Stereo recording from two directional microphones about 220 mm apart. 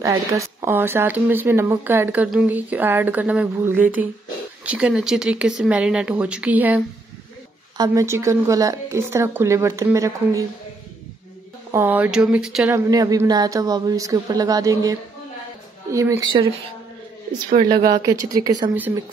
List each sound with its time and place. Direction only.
0.0 s speech: 15° right (ahead or behind)
11.7 s speech: 10° right (ahead or behind)
12.7 s speech: 15° right (ahead or behind)
17.6 s speech: 20° right (ahead or behind)